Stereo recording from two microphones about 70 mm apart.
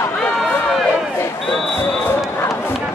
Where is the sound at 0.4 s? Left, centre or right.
Centre.